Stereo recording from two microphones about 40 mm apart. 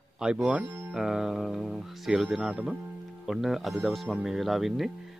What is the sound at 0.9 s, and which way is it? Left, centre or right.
Music, centre.